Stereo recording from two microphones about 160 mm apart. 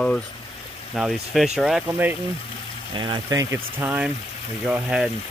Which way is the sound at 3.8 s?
10° right (ahead or behind).